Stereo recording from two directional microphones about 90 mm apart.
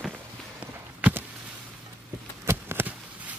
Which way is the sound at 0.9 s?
15° right (ahead or behind).